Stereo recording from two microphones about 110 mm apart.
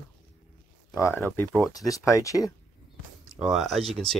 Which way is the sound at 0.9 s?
20° left (ahead or behind).